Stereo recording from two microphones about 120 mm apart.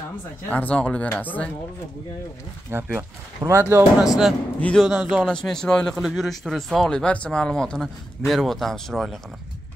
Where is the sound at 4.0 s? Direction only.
5° right (ahead or behind).